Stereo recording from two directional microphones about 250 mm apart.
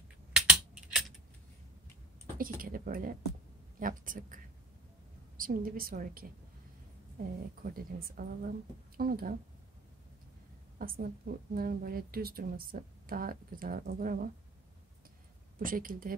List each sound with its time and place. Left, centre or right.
0.3 s typing: centre
2.3 s a woman's voice: right
5.4 s a woman's voice: right
7.6 s a woman's voice: right
10.8 s a woman's voice: right
15.6 s a woman's voice: right